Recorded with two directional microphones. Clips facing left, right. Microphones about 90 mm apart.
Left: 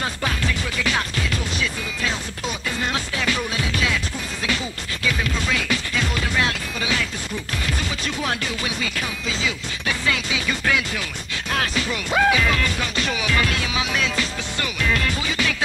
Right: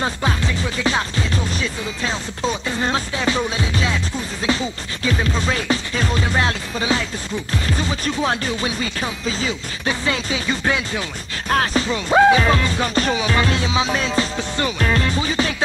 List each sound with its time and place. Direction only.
0.0 s music: 25° right (ahead or behind)
5.0 s speech: 30° right (ahead or behind)